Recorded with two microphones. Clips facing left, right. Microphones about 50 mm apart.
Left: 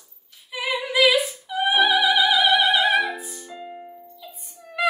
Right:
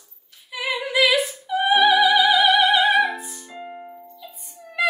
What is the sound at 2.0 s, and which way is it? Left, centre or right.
Opera, centre.